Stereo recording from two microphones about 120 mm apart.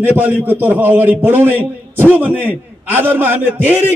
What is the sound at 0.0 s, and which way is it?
A man's voice, 15° right (ahead or behind).